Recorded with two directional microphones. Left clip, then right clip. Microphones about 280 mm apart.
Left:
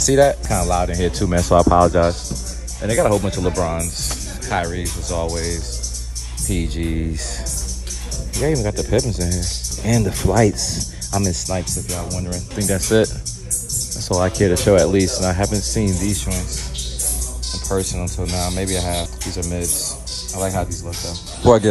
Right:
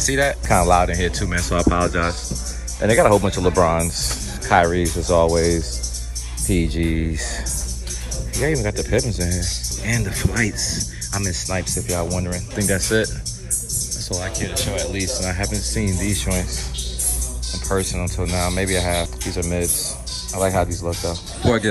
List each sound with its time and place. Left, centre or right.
0.1 s speech: centre
8.4 s speech: centre
9.8 s speech: centre
14.7 s speech: left
15.0 s speech: centre
17.6 s speech: centre